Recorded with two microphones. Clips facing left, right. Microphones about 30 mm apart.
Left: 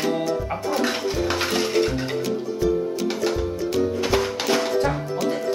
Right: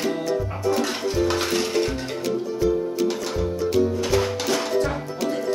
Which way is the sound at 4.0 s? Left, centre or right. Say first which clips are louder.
Even; left.